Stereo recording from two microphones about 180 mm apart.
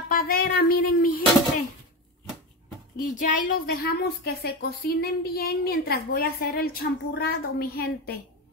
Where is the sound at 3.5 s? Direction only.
60° left (ahead or behind).